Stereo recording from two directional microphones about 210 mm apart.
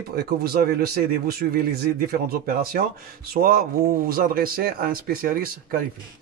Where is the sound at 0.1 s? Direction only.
50° right (ahead or behind).